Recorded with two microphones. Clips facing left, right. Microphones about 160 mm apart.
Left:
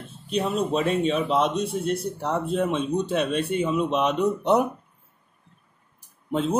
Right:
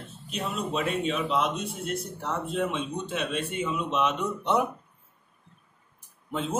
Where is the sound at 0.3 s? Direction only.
35° left (ahead or behind).